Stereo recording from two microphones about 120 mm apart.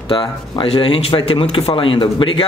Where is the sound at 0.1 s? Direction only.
45° left (ahead or behind).